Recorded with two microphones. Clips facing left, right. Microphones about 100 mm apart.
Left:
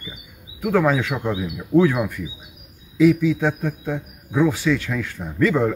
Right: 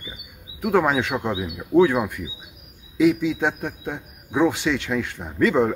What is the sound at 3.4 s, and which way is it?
A man's voice, 20° right (ahead or behind).